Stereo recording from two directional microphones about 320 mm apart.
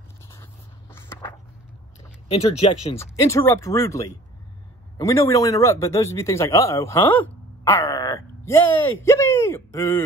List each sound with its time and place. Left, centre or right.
0.3 s a sound: centre
2.2 s speech: centre
3.0 s a man's voice: centre